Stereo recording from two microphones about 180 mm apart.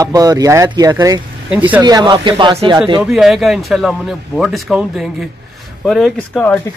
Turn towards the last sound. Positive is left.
turn(degrees=5)  # may be behind; listen again after turning